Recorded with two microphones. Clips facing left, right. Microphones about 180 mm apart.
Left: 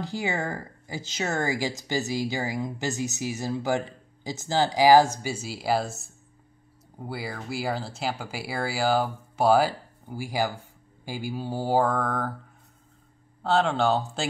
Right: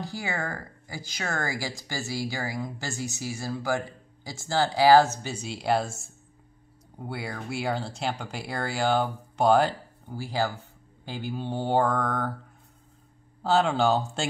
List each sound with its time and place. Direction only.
0.0 s speech: 20° left (ahead or behind); by 12.3 s 5° left (ahead or behind)
13.4 s speech: centre (ahead or behind)